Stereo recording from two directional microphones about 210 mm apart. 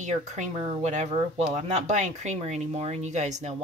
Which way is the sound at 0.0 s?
35° right (ahead or behind).